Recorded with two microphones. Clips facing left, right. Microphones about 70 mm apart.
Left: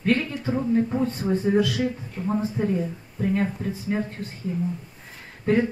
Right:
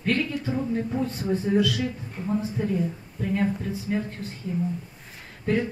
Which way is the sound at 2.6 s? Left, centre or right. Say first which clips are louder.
Left 5 dB; left.